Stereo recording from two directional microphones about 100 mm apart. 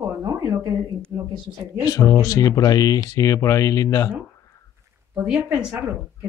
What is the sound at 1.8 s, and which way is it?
Speech, 35° left (ahead or behind).